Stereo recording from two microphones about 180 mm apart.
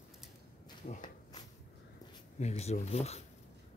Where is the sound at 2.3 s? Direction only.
40° left (ahead or behind).